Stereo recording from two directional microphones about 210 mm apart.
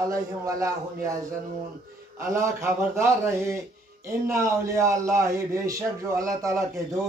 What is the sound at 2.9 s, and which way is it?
Speech, 15° right (ahead or behind).